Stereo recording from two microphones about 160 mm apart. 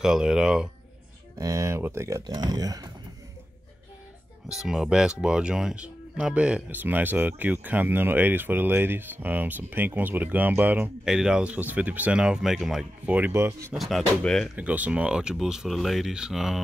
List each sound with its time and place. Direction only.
0.0 s speech: 5° right (ahead or behind)
1.4 s speech: 20° right (ahead or behind)
4.6 s speech: 5° right (ahead or behind)
13.7 s speech: centre (ahead or behind)
14.6 s speech: 10° right (ahead or behind)